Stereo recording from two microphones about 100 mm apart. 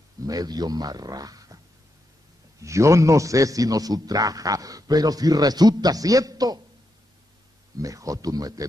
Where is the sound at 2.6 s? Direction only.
30° right (ahead or behind).